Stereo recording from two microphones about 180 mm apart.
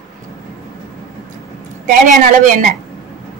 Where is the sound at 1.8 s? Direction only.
45° right (ahead or behind).